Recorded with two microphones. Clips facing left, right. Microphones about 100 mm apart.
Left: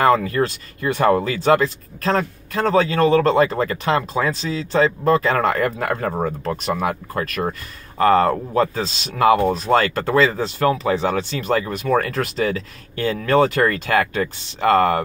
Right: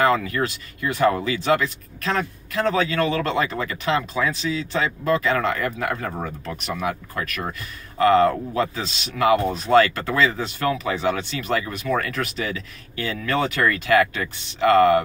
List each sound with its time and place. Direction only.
0.0 s speech: 40° left (ahead or behind)